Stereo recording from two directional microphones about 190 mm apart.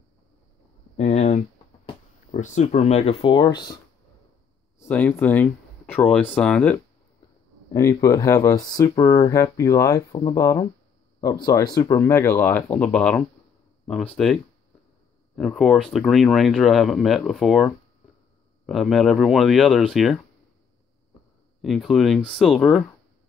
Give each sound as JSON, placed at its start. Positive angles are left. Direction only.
{"t": 0.9, "sound": "a sound", "side_deg": 35}
{"t": 2.3, "sound": "speech", "side_deg": 40}
{"t": 4.8, "sound": "speech", "side_deg": 10}
{"t": 7.7, "sound": "speech", "side_deg": 15}
{"t": 18.7, "sound": "speech", "side_deg": 0}
{"t": 21.5, "sound": "speech", "side_deg": 0}